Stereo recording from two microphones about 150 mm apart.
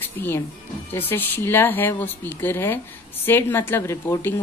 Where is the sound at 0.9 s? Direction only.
15° left (ahead or behind).